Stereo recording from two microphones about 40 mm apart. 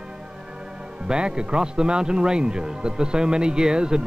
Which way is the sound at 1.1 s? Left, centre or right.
Right.